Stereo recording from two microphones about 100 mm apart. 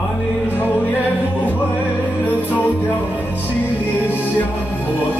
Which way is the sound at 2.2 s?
15° left (ahead or behind).